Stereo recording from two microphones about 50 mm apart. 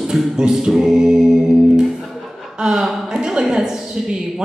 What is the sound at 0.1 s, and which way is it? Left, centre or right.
A woman's voice, centre.